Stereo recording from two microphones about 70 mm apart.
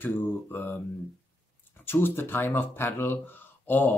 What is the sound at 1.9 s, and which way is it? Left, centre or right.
Speech, left.